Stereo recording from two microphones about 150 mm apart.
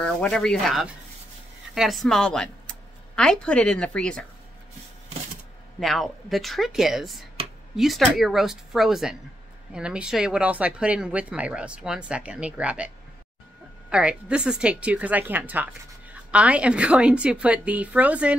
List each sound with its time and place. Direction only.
0.0 s a woman's voice: 5° left (ahead or behind)
5.8 s a woman's voice: centre (ahead or behind)